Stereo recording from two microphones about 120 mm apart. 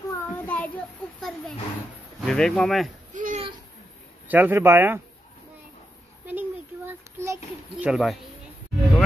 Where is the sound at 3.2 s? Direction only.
90° right.